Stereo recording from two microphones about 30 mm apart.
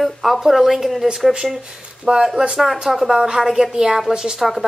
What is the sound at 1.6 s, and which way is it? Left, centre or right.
Speech, right.